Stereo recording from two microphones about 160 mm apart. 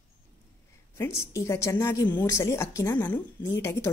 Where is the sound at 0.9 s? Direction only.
15° left (ahead or behind).